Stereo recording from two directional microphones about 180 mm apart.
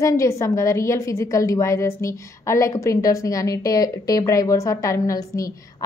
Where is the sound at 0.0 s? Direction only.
15° left (ahead or behind).